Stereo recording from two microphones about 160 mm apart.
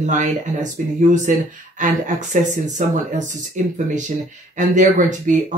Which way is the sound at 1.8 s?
50° right (ahead or behind).